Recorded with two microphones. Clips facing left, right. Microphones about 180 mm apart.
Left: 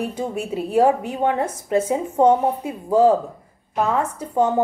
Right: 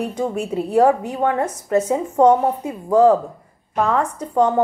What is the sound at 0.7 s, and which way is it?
A woman's voice, 25° left (ahead or behind).